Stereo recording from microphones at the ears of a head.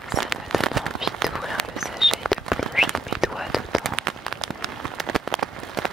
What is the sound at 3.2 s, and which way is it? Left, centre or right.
Whispering, centre.